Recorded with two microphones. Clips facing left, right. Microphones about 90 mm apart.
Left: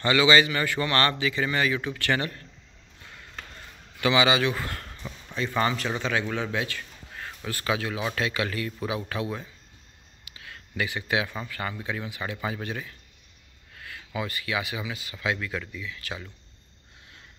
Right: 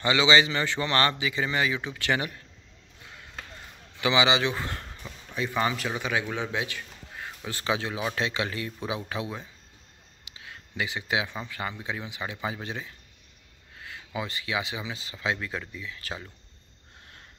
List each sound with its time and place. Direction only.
0.0 s speech: 20° right (ahead or behind)
4.0 s a man's voice: 20° right (ahead or behind)